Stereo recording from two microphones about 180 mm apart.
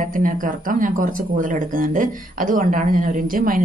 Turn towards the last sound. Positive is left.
turn(degrees=-50)  # may be behind; listen again after turning